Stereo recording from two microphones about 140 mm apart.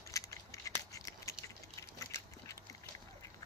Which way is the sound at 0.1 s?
25° left (ahead or behind).